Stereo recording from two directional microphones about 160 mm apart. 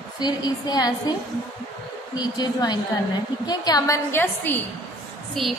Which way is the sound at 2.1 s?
25° left (ahead or behind).